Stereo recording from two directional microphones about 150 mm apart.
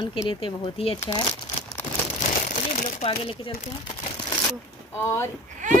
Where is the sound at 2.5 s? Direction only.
65° left (ahead or behind).